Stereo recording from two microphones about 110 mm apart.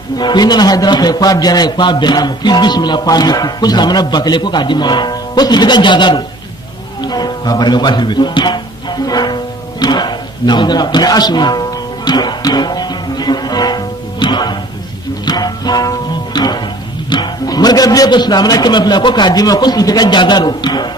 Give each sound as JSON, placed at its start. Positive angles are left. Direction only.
{"t": 0.2, "sound": "a man's voice", "side_deg": 40}
{"t": 7.0, "sound": "music", "side_deg": 40}
{"t": 17.1, "sound": "a man's voice", "side_deg": 40}